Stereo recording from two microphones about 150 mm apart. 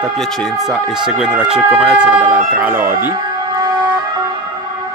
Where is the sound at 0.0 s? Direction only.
Centre (ahead or behind).